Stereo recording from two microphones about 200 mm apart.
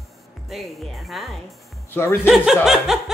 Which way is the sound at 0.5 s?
Centre (ahead or behind).